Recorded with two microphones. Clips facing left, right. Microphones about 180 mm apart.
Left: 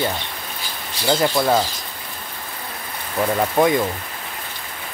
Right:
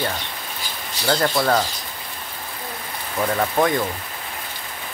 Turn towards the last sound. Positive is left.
turn(degrees=10)  # may be behind; listen again after turning